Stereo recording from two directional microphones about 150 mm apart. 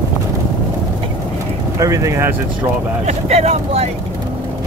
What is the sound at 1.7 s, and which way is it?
Speech, 20° right (ahead or behind).